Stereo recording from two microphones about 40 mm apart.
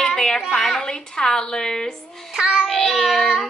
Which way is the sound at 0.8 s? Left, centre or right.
Centre.